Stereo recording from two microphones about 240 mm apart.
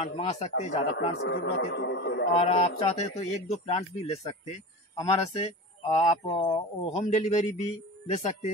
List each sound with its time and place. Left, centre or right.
0.0 s speech: left
1.1 s a man's voice: left
2.3 s speech: left